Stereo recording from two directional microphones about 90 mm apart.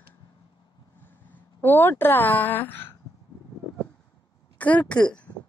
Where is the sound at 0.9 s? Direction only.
20° left (ahead or behind).